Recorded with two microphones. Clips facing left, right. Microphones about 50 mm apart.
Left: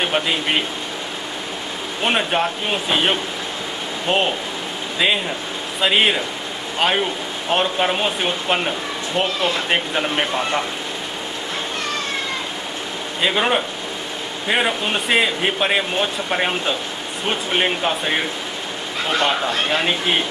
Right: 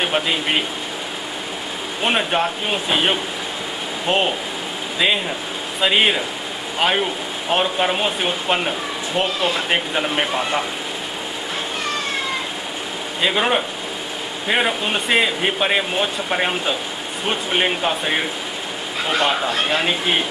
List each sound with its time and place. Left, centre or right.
0.0 s speech: centre
2.0 s speech: centre
13.2 s speech: centre